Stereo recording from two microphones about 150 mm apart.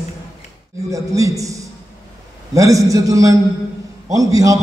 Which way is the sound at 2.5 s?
20° right (ahead or behind).